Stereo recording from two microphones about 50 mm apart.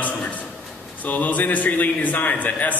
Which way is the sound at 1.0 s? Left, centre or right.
Left.